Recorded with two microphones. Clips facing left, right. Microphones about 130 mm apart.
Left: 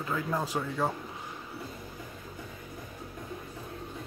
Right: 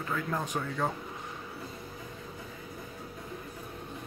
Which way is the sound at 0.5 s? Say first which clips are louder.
Left 1 dB; 10° left (ahead or behind).